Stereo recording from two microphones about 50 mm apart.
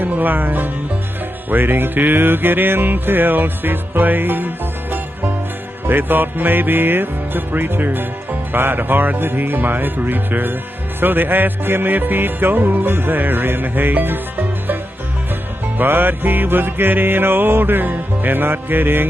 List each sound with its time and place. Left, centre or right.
0.0 s speech: right
1.5 s music: right
15.8 s music: right